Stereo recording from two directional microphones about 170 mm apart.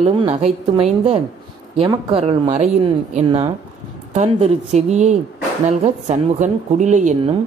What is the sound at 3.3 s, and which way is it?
A woman's voice, 30° right (ahead or behind).